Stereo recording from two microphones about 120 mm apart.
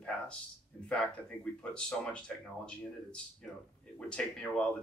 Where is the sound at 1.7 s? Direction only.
10° left (ahead or behind).